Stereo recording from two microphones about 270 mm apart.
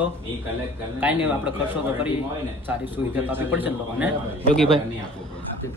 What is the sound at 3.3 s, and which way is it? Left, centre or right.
Speech, centre.